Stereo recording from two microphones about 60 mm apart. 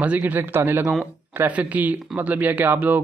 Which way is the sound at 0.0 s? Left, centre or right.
Right.